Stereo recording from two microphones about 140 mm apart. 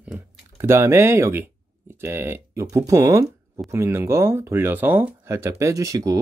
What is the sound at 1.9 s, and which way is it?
Speech, 15° right (ahead or behind).